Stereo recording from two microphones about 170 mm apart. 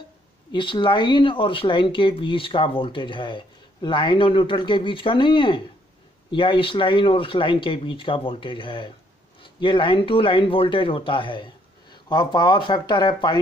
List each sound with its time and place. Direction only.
0.5 s speech: 30° left (ahead or behind)